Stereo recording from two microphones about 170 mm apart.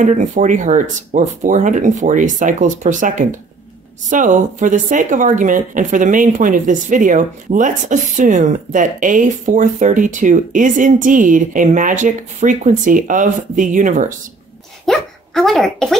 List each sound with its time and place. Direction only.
0.0 s a woman's voice: 50° right (ahead or behind)
14.9 s speech: centre (ahead or behind)